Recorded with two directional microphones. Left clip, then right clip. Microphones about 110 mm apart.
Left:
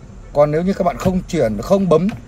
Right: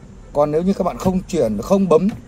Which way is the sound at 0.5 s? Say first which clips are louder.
Left 1 dB; 45° right (ahead or behind).